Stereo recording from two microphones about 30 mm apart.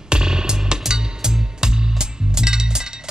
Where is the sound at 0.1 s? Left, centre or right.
Right.